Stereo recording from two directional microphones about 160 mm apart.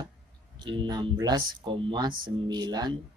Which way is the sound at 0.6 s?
30° right (ahead or behind).